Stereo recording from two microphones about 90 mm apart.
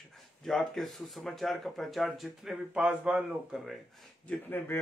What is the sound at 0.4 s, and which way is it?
Speech, centre (ahead or behind).